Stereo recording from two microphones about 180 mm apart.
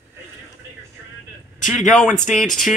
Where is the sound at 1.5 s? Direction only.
45° left (ahead or behind).